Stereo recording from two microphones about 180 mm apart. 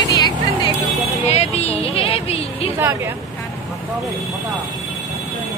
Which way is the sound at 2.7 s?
15° right (ahead or behind).